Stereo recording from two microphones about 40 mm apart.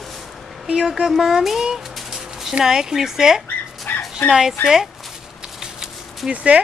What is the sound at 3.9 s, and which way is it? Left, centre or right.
Dog, left.